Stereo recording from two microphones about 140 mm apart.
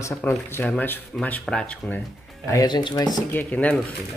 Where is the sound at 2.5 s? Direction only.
25° left (ahead or behind).